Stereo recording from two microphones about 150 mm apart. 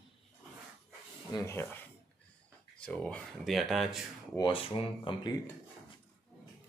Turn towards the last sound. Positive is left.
turn(degrees=30)  # may be behind; listen again after turning